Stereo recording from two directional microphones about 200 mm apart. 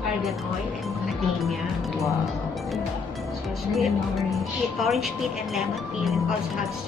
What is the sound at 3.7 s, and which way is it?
Speech, centre (ahead or behind).